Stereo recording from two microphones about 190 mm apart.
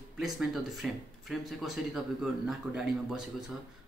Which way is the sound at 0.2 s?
Centre (ahead or behind).